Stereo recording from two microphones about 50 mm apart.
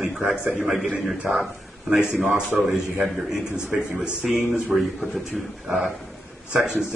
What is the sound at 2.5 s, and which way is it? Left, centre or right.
A man's voice, centre.